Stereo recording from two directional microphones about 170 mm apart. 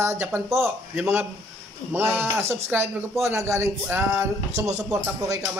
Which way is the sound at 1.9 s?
10° right (ahead or behind).